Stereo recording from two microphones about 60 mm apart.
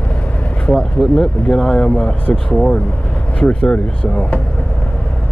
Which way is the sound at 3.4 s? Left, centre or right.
Centre.